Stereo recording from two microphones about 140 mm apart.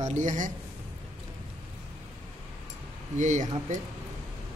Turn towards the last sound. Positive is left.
turn(degrees=-60)  # may be behind; listen again after turning